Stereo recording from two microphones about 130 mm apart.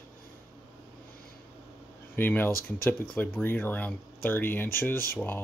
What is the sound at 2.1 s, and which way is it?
Speech, 15° left (ahead or behind).